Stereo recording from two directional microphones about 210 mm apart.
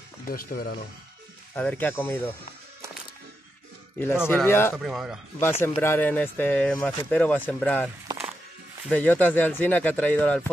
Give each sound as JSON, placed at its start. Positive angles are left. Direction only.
{"t": 0.3, "sound": "speech", "side_deg": 45}
{"t": 1.5, "sound": "speech", "side_deg": 10}
{"t": 4.0, "sound": "speech", "side_deg": 10}
{"t": 4.7, "sound": "a man's voice", "side_deg": 0}
{"t": 5.4, "sound": "speech", "side_deg": 10}
{"t": 8.9, "sound": "speech", "side_deg": 5}